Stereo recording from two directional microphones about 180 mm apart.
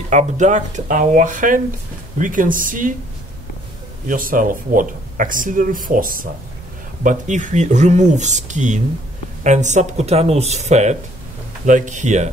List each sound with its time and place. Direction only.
0.1 s speech: 40° right (ahead or behind)
4.1 s speech: 50° right (ahead or behind)